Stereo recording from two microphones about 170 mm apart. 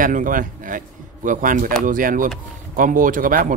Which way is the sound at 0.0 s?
50° right (ahead or behind).